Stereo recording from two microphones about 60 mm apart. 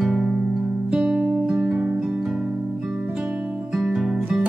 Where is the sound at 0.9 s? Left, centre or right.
Centre.